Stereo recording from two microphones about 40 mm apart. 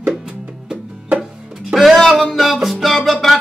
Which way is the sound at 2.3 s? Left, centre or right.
Centre.